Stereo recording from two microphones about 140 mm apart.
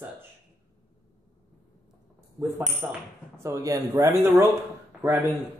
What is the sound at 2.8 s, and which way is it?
Speech, 15° right (ahead or behind).